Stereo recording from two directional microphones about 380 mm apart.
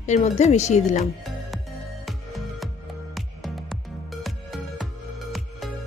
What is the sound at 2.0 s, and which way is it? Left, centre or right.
Music, centre.